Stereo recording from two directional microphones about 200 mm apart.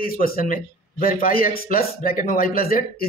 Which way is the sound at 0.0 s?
45° left (ahead or behind).